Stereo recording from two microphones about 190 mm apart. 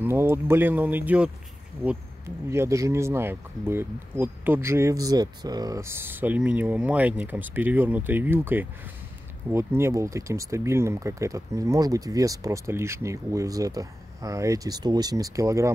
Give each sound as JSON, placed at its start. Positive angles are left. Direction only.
{"t": 0.0, "sound": "speech", "side_deg": -10}